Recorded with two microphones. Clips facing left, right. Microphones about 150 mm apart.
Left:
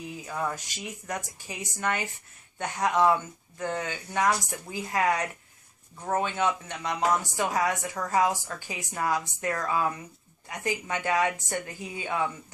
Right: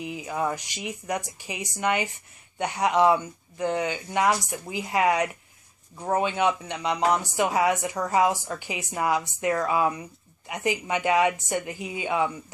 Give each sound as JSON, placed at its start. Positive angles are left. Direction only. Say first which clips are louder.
{"t": 0.1, "sound": "speech", "louder": "right 4 dB", "side_deg": -15}